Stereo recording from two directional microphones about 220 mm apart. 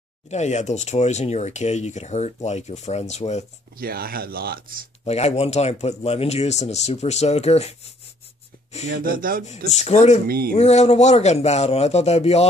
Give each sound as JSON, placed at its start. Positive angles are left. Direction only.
{"t": 0.3, "sound": "speech", "side_deg": 30}
{"t": 3.7, "sound": "speech", "side_deg": -45}
{"t": 5.0, "sound": "speech", "side_deg": 30}
{"t": 8.9, "sound": "speech", "side_deg": -40}
{"t": 9.7, "sound": "speech", "side_deg": 30}
{"t": 10.2, "sound": "speech", "side_deg": -45}
{"t": 10.5, "sound": "speech", "side_deg": 30}